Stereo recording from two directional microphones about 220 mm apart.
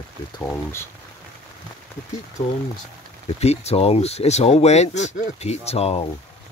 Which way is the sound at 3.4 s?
30° left (ahead or behind).